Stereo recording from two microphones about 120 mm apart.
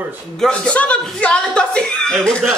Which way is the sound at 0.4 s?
10° left (ahead or behind).